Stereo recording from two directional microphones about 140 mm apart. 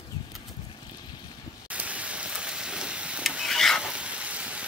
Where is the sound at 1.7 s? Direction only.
10° right (ahead or behind).